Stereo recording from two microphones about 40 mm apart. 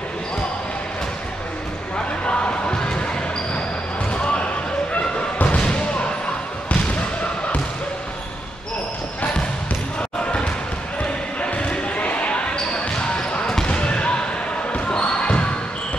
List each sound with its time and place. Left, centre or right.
2.2 s basketball bounce: left
4.1 s basketball bounce: left
4.9 s slam: left
5.6 s basketball bounce: left
11.4 s basketball bounce: left
12.5 s a sound: left
13.7 s basketball bounce: left